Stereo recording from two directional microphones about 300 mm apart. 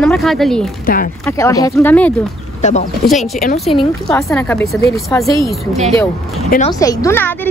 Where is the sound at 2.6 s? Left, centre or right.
Left.